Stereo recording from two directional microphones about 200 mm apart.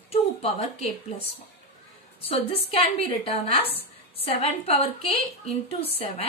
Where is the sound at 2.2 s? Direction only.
30° left (ahead or behind).